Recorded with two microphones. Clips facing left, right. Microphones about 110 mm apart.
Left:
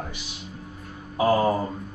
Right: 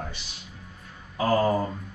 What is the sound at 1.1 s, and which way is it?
Speech, 15° left (ahead or behind).